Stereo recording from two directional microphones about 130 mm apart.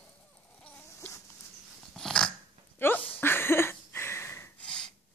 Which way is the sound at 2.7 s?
15° left (ahead or behind).